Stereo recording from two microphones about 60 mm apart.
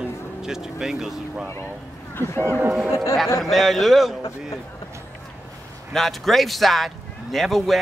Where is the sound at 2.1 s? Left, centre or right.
Left.